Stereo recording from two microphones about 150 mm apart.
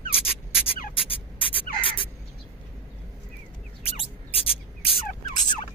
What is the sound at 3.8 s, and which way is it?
Rodents, 40° left (ahead or behind).